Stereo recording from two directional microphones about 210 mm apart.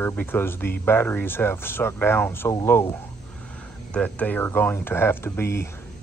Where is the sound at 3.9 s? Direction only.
5° left (ahead or behind).